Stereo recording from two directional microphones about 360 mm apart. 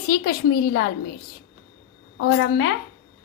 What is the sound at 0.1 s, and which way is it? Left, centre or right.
Speech, left.